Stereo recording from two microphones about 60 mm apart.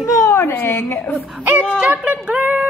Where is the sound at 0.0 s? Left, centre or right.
Left.